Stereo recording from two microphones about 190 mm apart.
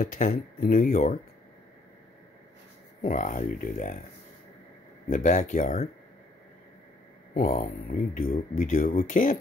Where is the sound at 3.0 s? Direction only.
45° left (ahead or behind).